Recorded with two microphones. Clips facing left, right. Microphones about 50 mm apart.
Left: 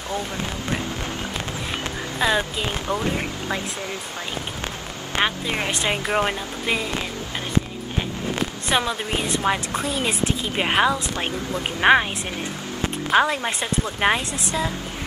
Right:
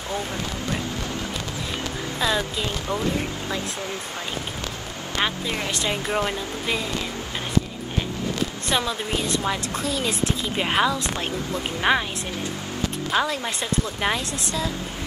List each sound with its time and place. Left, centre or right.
2.1 s speech: left
5.2 s speech: left
8.6 s speech: left